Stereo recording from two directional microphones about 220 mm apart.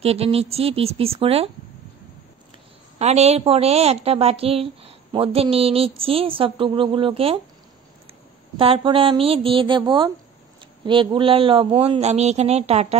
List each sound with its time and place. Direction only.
0.0 s a woman's voice: 25° right (ahead or behind)
3.0 s a woman's voice: 30° right (ahead or behind)
8.5 s a woman's voice: 25° right (ahead or behind)